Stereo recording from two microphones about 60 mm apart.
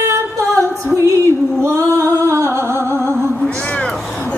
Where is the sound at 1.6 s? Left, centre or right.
Right.